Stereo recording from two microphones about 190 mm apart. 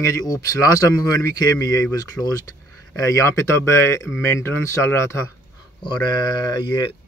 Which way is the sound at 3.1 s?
15° left (ahead or behind).